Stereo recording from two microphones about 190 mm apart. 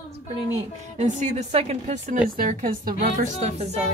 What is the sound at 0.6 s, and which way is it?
A woman's voice, 40° right (ahead or behind).